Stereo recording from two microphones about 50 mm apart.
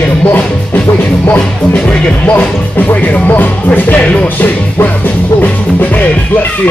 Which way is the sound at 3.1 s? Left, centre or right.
Left.